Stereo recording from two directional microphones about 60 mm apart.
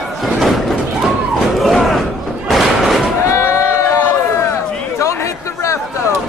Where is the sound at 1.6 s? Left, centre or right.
Centre.